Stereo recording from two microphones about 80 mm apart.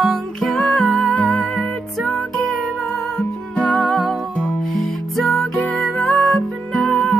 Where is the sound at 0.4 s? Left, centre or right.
Centre.